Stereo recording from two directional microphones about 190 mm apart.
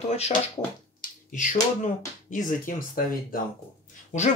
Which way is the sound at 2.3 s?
45° left (ahead or behind).